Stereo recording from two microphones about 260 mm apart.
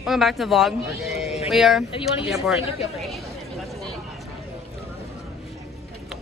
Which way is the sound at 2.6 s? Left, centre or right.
Left.